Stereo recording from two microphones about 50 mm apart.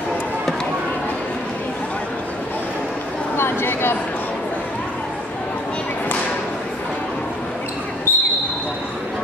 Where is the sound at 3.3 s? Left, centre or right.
Left.